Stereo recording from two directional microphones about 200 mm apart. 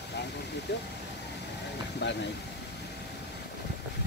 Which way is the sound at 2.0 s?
60° left (ahead or behind).